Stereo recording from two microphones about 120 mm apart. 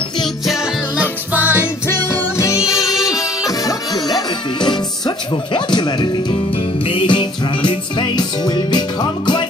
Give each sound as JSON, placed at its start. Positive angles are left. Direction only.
{"t": 1.3, "sound": "music", "side_deg": -15}
{"t": 1.6, "sound": "music", "side_deg": 20}